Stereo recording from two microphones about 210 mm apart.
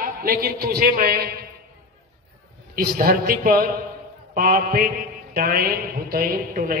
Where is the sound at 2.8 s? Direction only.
45° right (ahead or behind).